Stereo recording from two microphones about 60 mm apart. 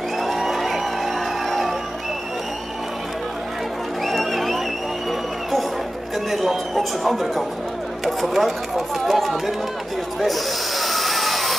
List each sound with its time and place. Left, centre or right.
0.2 s music: centre
4.0 s music: centre
6.3 s a sound: centre
8.0 s speech: centre
10.2 s snake: centre